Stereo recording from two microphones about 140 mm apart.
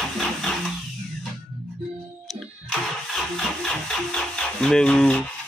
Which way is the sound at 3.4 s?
5° left (ahead or behind).